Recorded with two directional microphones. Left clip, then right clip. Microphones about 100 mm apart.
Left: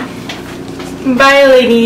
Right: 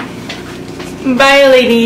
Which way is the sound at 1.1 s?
Centre (ahead or behind).